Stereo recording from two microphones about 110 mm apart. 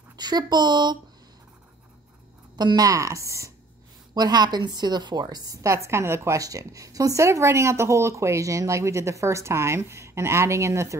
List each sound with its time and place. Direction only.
0.2 s speech: 40° right (ahead or behind)
2.5 s a woman's voice: 40° right (ahead or behind)